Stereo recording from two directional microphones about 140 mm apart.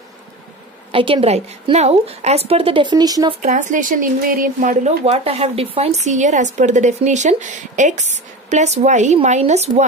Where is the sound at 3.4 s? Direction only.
65° right (ahead or behind).